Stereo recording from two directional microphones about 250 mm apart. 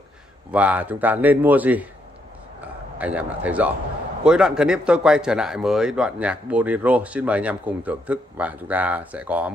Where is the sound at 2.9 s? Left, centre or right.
Centre.